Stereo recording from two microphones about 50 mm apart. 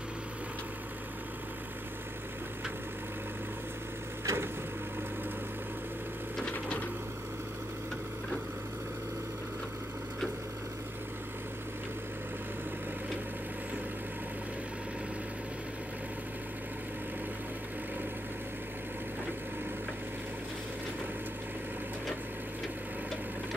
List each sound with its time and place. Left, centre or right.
4.3 s vehicle: right